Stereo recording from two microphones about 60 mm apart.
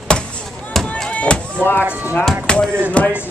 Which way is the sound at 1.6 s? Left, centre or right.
Left.